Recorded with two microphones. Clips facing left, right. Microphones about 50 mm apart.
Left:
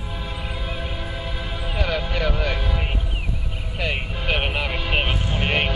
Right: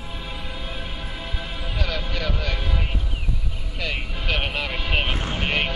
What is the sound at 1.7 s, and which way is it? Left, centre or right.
Vehicle, centre.